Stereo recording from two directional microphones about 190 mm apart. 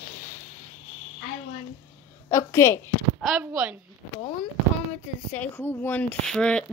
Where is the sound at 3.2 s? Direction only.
5° right (ahead or behind).